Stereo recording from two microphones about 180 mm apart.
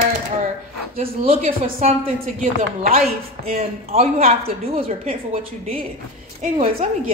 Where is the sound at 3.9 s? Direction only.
35° right (ahead or behind).